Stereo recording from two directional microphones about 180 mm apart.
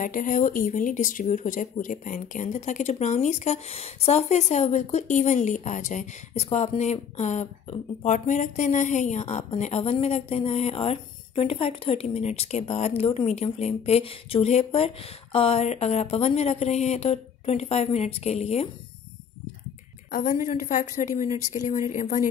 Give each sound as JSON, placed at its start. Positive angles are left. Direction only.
{"t": 0.0, "sound": "speech", "side_deg": 45}
{"t": 20.1, "sound": "a woman's voice", "side_deg": 50}